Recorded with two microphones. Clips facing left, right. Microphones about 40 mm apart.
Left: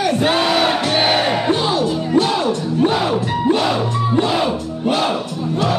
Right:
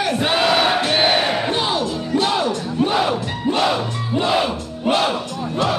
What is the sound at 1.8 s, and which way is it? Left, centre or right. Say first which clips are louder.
Music: left 4 dB; centre.